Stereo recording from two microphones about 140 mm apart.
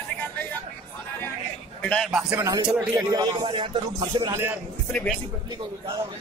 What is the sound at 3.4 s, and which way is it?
Music, 35° right (ahead or behind).